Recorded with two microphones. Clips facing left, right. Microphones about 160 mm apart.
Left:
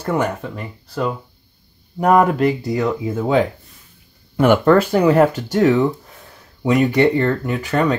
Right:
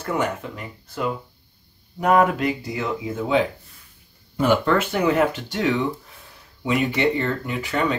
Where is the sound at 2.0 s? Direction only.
40° left (ahead or behind).